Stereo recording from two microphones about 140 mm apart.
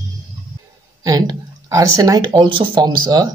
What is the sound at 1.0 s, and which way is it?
Speech, 25° right (ahead or behind).